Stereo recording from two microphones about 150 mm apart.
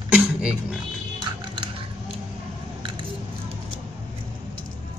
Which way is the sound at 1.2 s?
30° right (ahead or behind).